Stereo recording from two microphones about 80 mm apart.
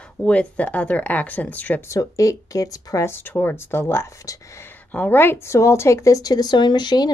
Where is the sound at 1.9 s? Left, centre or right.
Left.